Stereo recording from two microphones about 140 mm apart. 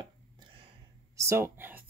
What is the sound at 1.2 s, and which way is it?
Speech, 20° right (ahead or behind).